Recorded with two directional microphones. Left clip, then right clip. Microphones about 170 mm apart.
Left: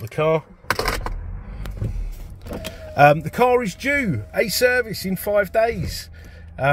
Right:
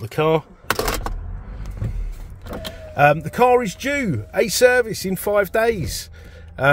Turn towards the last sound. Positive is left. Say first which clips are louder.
# right 3 dB
turn(degrees=-15)  # may be behind; listen again after turning